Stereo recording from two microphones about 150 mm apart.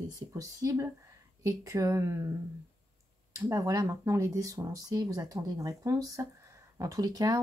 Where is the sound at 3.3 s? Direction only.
20° right (ahead or behind).